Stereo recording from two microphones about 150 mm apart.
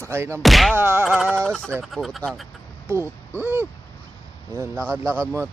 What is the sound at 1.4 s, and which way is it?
Speech, 5° left (ahead or behind).